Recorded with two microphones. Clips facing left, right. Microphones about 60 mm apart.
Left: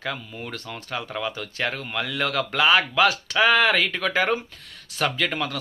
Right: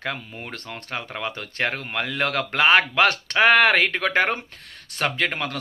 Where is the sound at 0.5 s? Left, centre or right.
Right.